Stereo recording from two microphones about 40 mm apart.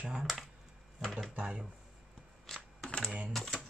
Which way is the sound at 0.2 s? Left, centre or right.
Centre.